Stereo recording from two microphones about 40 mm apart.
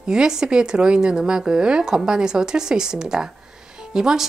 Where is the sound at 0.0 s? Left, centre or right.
Right.